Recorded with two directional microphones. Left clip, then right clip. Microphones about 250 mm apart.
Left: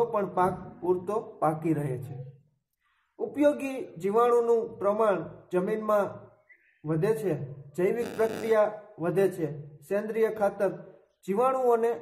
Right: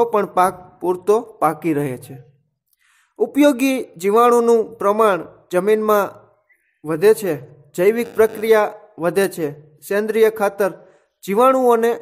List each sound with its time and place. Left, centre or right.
0.1 s a man's voice: right
3.2 s a man's voice: right